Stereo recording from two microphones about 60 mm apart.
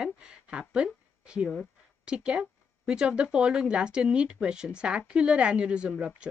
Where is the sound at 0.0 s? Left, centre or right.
Centre.